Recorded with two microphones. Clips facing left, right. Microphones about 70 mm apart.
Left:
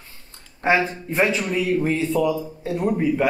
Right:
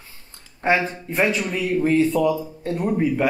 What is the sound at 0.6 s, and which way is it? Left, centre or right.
Speech, centre.